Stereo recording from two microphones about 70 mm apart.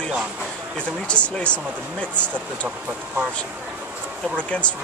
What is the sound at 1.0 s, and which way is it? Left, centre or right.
Speech, centre.